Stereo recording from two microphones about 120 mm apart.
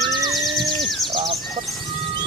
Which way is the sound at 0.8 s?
Centre (ahead or behind).